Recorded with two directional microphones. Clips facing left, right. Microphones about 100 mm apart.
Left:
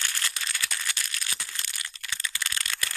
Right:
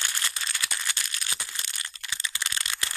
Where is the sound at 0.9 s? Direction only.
25° right (ahead or behind).